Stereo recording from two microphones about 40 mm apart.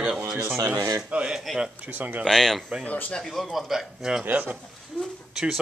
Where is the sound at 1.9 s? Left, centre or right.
Right.